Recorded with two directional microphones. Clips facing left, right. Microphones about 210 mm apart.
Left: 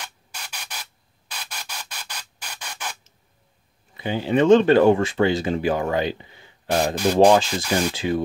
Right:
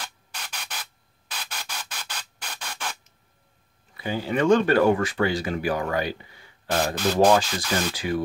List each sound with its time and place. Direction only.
0.3 s a sound: 10° left (ahead or behind)
3.9 s speech: 20° left (ahead or behind)
7.3 s speech: 25° left (ahead or behind)
7.6 s speech: 10° left (ahead or behind)
7.9 s speech: 25° left (ahead or behind)